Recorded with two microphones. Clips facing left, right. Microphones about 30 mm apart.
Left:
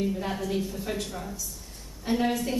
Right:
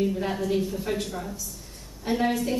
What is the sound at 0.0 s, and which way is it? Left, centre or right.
A woman's voice, centre.